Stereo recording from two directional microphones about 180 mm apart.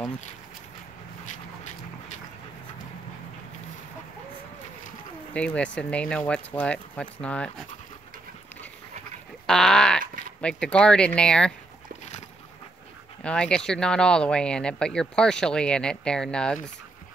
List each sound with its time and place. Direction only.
1.2 s a sound: 40° left (ahead or behind)
5.3 s speech: 5° left (ahead or behind)
9.5 s speech: 5° left (ahead or behind)
13.2 s speech: 5° left (ahead or behind)